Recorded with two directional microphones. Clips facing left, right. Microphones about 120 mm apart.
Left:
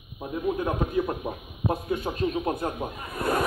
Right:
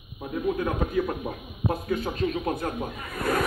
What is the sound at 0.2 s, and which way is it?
Speech, 20° left (ahead or behind).